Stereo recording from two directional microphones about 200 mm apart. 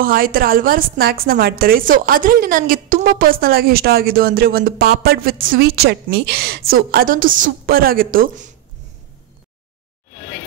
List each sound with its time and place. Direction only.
0.0 s a woman's voice: 45° right (ahead or behind)